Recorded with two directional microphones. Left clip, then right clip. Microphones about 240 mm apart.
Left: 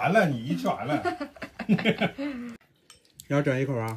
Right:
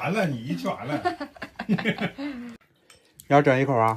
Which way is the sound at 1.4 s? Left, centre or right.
Centre.